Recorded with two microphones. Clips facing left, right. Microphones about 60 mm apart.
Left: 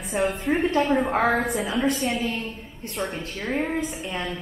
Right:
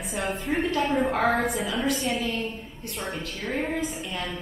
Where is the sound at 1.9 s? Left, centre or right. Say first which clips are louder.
Left 1 dB; centre.